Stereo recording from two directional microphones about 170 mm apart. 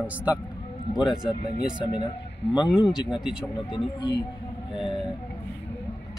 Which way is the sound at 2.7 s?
5° right (ahead or behind).